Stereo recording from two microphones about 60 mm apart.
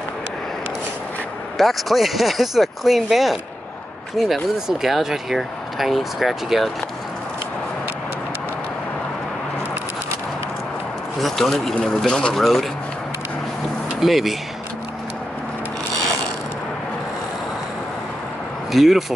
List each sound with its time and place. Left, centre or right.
1.6 s speech: centre
11.1 s speech: centre
13.9 s speech: centre
18.7 s speech: centre